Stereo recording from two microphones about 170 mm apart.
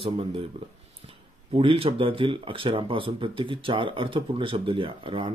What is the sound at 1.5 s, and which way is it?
Speech, 30° right (ahead or behind).